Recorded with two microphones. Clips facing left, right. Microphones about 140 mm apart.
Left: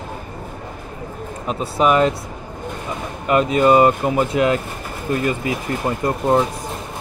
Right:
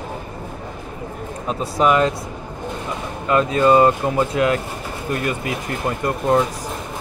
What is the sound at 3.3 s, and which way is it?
Speech, 20° left (ahead or behind).